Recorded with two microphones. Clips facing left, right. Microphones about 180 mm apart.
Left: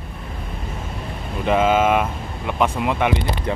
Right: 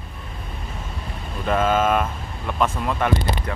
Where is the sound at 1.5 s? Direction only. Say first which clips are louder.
Left 3 dB; 15° left (ahead or behind).